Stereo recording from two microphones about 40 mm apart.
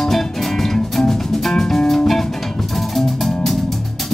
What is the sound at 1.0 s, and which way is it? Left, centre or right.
Music, left.